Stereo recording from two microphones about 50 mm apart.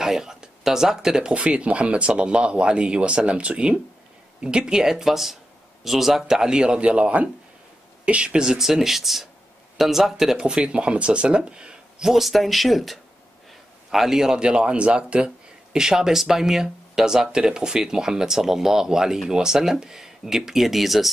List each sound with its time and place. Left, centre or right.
0.0 s speech: centre
1.3 s speech: right; by 10.4 s centre
10.4 s speech: centre
12.1 s speech: centre